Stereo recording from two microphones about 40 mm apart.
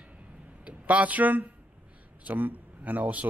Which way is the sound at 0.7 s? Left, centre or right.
Right.